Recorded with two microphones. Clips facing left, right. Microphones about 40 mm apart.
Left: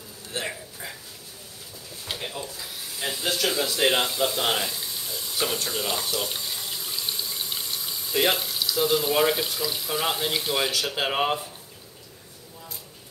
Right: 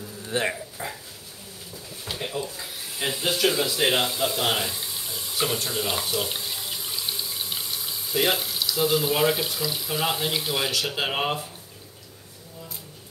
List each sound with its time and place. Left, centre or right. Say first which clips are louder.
0.3 s speech: right 6 dB; right
2.1 s speech: right 5 dB; centre
2.5 s rub: right 1 dB; right
3.1 s a sound: right 3 dB; centre
8.1 s speech: even; centre